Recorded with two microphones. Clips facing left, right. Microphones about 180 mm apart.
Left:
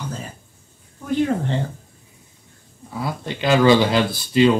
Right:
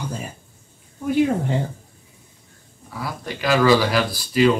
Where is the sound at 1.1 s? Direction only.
10° right (ahead or behind).